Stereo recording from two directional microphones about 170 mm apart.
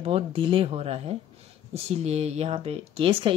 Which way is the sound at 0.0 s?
35° right (ahead or behind).